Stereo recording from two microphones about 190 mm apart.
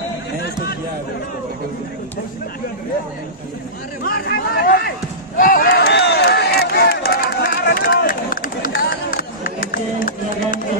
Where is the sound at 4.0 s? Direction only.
50° left (ahead or behind).